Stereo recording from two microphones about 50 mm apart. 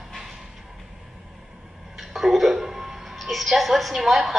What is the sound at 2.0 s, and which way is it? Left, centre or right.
A woman's voice, centre.